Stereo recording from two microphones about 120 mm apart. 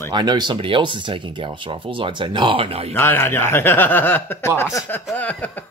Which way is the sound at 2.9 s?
15° left (ahead or behind).